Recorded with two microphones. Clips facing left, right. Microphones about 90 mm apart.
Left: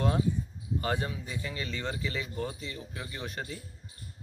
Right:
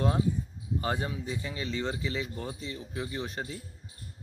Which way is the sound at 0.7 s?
30° right (ahead or behind).